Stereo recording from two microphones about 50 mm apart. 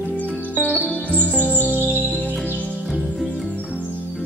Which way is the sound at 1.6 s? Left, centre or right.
Right.